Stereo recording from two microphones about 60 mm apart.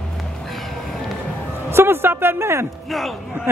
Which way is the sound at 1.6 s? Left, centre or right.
Right.